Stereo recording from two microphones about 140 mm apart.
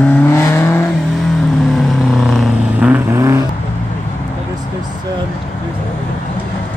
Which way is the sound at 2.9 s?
20° right (ahead or behind).